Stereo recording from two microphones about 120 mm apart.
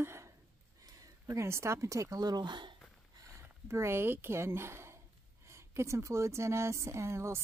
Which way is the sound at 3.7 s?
20° right (ahead or behind).